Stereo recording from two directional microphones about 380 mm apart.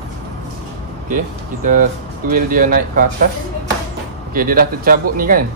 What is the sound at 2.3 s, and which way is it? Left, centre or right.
Speech, right.